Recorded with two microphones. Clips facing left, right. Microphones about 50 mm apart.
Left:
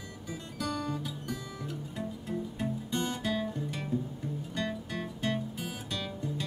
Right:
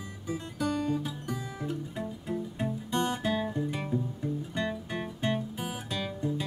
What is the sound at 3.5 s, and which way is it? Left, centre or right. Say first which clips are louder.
Music: right 4 dB; right.